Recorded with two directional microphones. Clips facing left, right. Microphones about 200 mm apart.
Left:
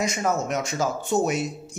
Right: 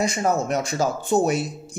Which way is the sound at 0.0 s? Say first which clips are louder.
Right 3 dB; 30° right (ahead or behind).